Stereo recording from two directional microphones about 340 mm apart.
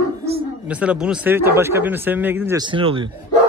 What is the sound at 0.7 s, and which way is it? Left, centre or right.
Speech, centre.